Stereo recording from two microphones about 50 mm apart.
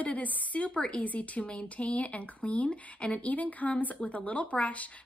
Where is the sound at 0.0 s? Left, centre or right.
Left.